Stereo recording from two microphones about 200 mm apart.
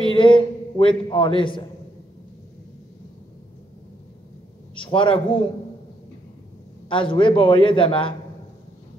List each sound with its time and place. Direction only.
0.0 s a man's voice: 25° left (ahead or behind)
4.7 s a man's voice: 25° left (ahead or behind)
6.9 s a man's voice: 25° left (ahead or behind)